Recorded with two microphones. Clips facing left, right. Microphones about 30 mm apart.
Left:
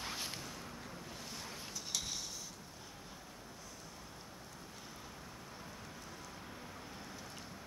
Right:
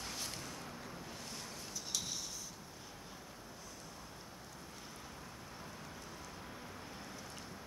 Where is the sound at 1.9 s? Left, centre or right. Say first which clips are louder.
Left 1 dB; centre.